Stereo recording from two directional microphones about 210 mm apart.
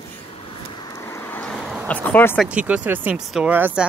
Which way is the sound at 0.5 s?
15° left (ahead or behind).